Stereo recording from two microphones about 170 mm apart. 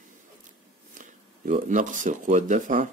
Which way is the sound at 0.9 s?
45° right (ahead or behind).